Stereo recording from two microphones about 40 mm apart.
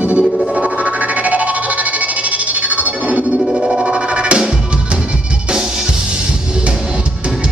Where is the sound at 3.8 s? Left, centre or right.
Right.